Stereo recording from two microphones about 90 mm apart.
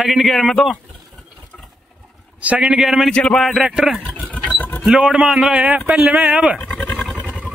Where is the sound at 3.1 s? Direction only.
10° left (ahead or behind).